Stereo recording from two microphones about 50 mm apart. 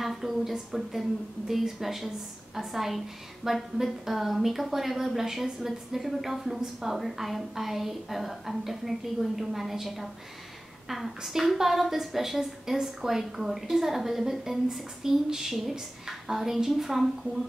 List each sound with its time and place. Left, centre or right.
0.0 s a woman's voice: centre